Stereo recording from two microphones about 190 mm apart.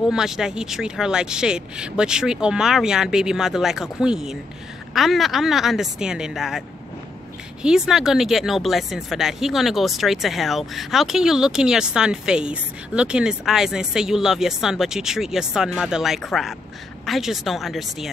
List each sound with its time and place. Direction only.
0.1 s speech: 5° right (ahead or behind)
7.6 s speech: 5° right (ahead or behind)